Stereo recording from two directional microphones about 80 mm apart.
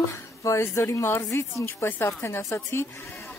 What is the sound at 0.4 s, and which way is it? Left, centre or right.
A woman's voice, left.